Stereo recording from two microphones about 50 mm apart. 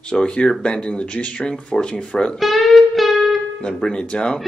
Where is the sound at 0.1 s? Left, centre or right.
Centre.